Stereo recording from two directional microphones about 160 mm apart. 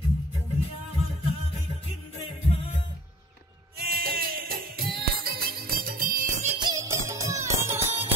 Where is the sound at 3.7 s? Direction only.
70° right (ahead or behind); by 6.5 s 50° right (ahead or behind).